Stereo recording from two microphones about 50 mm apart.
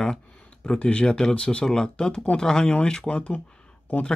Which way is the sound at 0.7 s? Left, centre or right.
Left.